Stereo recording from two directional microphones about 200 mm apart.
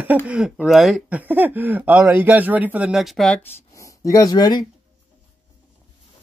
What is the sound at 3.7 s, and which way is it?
Speech, 15° left (ahead or behind).